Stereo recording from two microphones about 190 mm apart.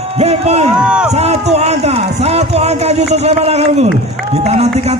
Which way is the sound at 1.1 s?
35° right (ahead or behind).